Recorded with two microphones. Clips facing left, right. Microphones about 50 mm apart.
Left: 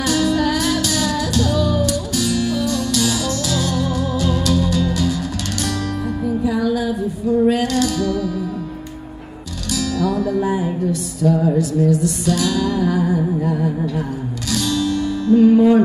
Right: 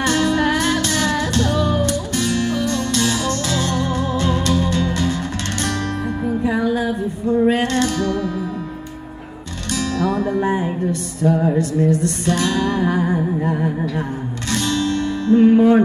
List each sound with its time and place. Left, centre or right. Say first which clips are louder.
0.0 s music: even; right
6.2 s music: even; right
9.7 s music: even; right